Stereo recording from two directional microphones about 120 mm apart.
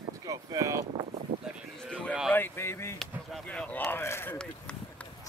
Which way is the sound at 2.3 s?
20° left (ahead or behind).